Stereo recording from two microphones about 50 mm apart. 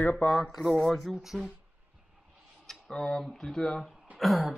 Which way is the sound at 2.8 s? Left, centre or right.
Centre.